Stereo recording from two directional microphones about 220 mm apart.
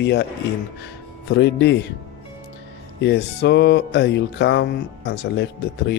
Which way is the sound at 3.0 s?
50° left (ahead or behind).